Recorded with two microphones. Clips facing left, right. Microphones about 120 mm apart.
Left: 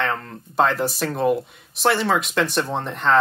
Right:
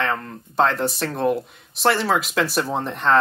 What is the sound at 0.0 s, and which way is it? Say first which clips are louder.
Speech: even; centre (ahead or behind).